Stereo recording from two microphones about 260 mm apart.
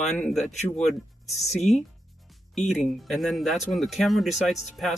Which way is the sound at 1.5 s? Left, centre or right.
Left.